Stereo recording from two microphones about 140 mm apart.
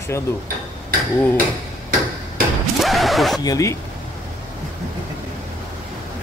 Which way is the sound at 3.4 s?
25° left (ahead or behind).